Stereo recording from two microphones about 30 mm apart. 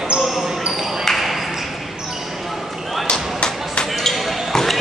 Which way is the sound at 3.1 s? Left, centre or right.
Left.